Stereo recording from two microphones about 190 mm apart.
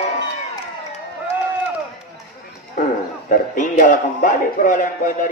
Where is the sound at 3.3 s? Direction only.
45° left (ahead or behind).